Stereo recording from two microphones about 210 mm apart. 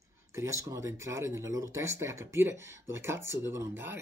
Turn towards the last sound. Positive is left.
turn(degrees=-10)  # may be behind; listen again after turning